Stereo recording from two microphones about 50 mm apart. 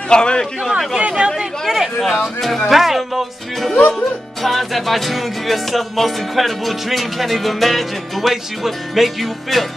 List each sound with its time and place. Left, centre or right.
0.1 s a man's voice: centre
0.7 s speech: centre
1.0 s speech: centre
1.7 s music: centre
2.7 s speech: centre
4.4 s music: centre